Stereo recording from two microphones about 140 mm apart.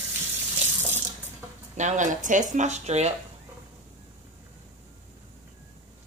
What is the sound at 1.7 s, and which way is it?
Speech, 60° right (ahead or behind).